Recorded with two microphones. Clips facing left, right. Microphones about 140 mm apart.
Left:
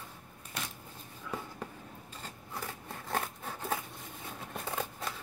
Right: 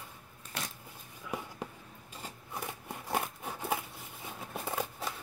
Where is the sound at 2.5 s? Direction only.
15° right (ahead or behind).